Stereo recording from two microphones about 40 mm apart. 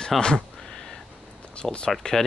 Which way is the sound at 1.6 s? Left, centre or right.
Centre.